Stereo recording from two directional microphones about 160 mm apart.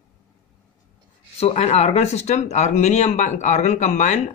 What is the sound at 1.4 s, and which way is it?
Speech, 40° left (ahead or behind).